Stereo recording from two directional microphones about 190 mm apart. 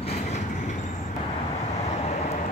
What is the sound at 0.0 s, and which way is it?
Train, 35° left (ahead or behind).